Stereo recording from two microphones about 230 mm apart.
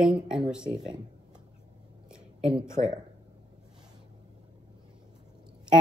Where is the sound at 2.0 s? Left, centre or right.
Centre.